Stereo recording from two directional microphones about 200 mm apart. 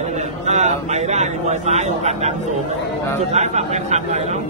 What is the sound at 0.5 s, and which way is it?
A man's voice, 35° right (ahead or behind).